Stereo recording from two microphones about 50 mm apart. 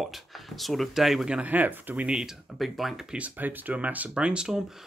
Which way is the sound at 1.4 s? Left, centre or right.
Right.